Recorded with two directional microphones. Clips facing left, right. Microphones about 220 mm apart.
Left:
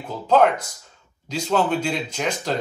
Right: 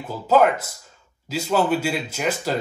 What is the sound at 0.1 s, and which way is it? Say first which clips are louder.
Speech: even; 5° right (ahead or behind).